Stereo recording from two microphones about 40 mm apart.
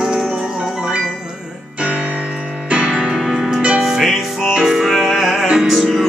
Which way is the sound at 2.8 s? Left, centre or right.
Centre.